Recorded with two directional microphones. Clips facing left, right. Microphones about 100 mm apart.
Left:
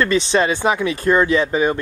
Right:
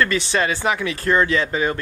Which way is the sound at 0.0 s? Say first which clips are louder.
Left 3 dB; 20° left (ahead or behind).